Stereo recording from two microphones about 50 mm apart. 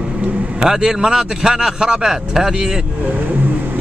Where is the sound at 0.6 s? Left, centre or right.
Centre.